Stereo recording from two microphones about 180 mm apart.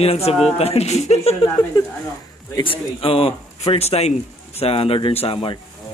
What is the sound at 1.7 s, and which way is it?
Speech, 20° left (ahead or behind).